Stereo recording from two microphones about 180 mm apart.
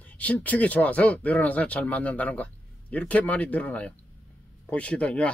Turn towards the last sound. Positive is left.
turn(degrees=5)  # may be behind; listen again after turning